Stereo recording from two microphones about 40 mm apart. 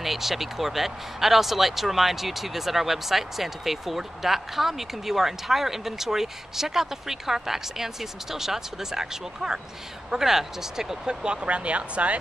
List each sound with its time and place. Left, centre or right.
0.0 s speech: centre
11.2 s speech: right